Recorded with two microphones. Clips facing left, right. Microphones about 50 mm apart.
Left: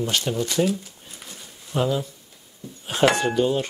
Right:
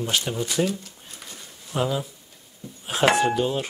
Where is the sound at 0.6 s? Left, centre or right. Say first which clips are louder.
Left 2 dB; centre.